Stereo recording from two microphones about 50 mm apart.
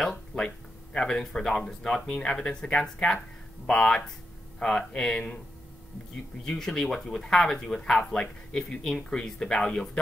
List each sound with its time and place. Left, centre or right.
0.3 s speech: centre
6.4 s speech: centre